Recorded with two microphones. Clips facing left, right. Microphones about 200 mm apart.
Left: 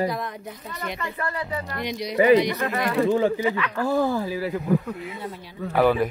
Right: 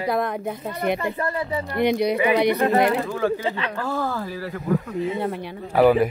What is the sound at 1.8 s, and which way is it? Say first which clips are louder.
Speech: right 13 dB; 60° right (ahead or behind).